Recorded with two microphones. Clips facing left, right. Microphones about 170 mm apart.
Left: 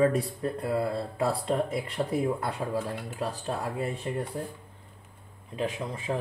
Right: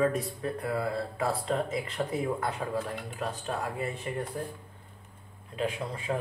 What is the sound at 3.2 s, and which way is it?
Speech, 35° left (ahead or behind).